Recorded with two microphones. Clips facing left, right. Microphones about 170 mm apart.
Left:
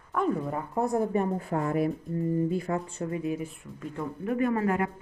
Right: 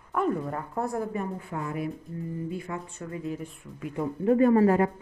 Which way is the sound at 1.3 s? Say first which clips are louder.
Left 5 dB; 45° left (ahead or behind).